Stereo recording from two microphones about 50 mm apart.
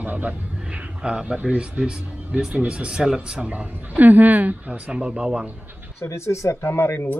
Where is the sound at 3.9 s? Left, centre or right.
Right.